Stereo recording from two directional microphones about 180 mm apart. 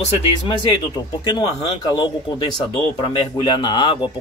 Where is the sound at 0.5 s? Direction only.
25° left (ahead or behind).